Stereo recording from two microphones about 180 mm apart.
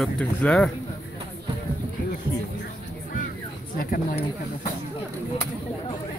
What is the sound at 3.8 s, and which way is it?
Speech, 55° left (ahead or behind).